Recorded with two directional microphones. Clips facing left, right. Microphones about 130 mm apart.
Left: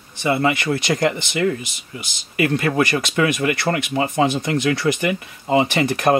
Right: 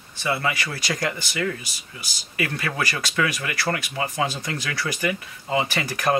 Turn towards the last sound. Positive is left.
turn(degrees=25)  # may be behind; listen again after turning